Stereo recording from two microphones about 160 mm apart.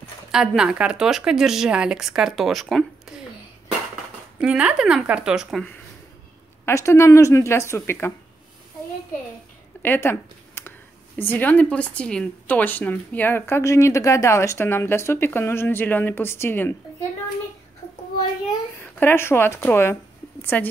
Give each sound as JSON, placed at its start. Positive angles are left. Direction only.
{"t": 0.3, "sound": "a woman's voice", "side_deg": -5}
{"t": 4.4, "sound": "a woman's voice", "side_deg": -5}
{"t": 6.6, "sound": "speech", "side_deg": 15}
{"t": 9.8, "sound": "a sound", "side_deg": 15}
{"t": 11.1, "sound": "speech", "side_deg": 10}
{"t": 18.8, "sound": "speech", "side_deg": 15}